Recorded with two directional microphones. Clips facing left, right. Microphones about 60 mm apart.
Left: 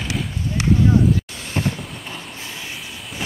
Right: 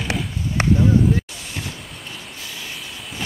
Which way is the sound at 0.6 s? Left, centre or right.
Right.